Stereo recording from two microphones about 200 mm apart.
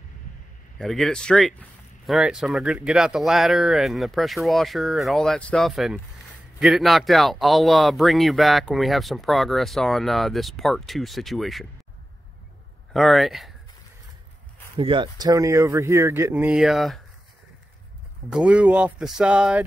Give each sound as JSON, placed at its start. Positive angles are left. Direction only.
{"t": 0.7, "sound": "speech", "side_deg": 0}
{"t": 12.9, "sound": "speech", "side_deg": 0}
{"t": 14.8, "sound": "speech", "side_deg": -25}
{"t": 16.4, "sound": "speech", "side_deg": 0}
{"t": 18.3, "sound": "speech", "side_deg": -5}